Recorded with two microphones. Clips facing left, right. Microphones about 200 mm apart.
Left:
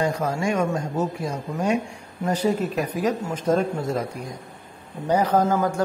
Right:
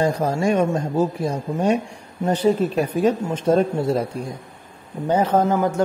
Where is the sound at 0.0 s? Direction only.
35° right (ahead or behind).